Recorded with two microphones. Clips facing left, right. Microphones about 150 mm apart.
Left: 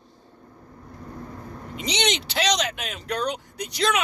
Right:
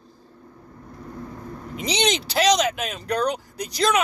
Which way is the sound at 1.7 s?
Centre (ahead or behind).